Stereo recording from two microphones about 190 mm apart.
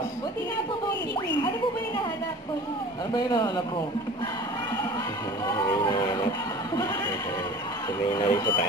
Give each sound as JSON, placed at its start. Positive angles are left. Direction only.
{"t": 3.2, "sound": "speech", "side_deg": 20}
{"t": 5.7, "sound": "a sound", "side_deg": 25}
{"t": 8.1, "sound": "speech", "side_deg": 20}